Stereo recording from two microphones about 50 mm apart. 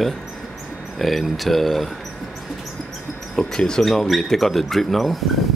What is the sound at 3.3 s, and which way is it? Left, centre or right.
Speech, centre.